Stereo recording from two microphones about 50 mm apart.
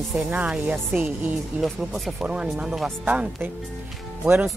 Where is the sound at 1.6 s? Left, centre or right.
Centre.